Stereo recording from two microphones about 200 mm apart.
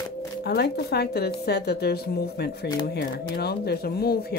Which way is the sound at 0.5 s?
55° left (ahead or behind).